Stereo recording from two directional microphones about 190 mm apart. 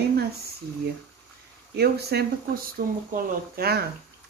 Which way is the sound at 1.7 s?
60° right (ahead or behind).